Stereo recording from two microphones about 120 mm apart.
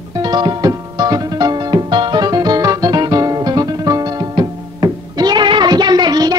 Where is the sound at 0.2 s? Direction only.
35° right (ahead or behind).